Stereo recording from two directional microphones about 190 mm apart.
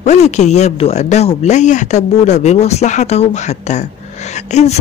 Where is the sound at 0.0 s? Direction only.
35° left (ahead or behind).